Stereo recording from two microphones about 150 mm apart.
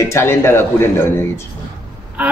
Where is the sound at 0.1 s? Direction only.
20° left (ahead or behind).